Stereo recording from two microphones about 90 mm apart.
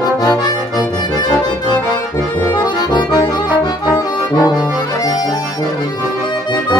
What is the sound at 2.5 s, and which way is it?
Accordion, 55° left (ahead or behind).